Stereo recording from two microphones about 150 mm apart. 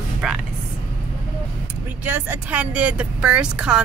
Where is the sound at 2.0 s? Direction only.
15° right (ahead or behind).